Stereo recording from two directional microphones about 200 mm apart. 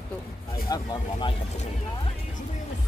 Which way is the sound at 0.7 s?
25° left (ahead or behind).